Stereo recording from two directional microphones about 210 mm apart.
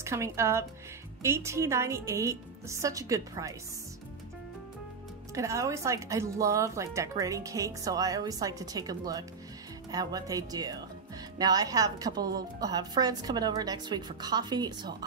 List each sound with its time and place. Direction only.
0.0 s speech: 15° right (ahead or behind)
5.3 s a woman's voice: 15° right (ahead or behind)